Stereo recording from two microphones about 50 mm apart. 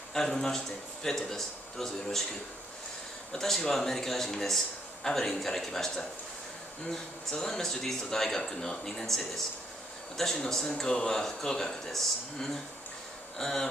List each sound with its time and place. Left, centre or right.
0.1 s speech: centre
3.3 s speech: centre